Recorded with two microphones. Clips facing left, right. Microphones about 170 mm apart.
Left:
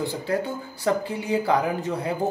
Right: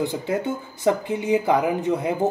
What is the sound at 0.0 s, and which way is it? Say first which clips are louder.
Speech: right 2 dB; 20° right (ahead or behind).